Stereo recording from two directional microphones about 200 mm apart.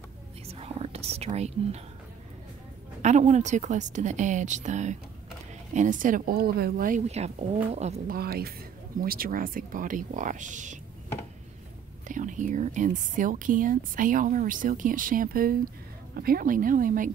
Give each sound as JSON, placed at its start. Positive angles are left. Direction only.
{"t": 0.5, "sound": "whispering", "side_deg": -30}
{"t": 3.0, "sound": "speech", "side_deg": -35}
{"t": 8.2, "sound": "speech", "side_deg": -50}
{"t": 12.1, "sound": "speech", "side_deg": -40}